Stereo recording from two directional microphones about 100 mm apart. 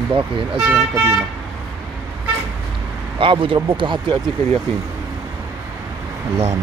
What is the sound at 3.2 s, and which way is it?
Speech, 60° right (ahead or behind).